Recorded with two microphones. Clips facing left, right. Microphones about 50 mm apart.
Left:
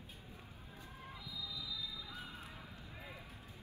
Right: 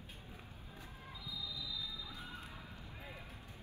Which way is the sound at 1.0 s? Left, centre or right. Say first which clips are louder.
Right 1 dB; left.